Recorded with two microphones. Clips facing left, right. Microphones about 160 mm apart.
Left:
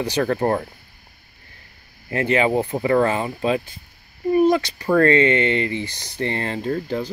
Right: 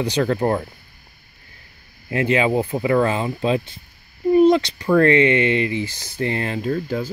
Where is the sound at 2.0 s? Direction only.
20° right (ahead or behind).